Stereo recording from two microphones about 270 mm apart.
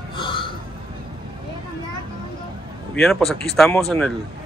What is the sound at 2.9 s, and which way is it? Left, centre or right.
Speech, centre.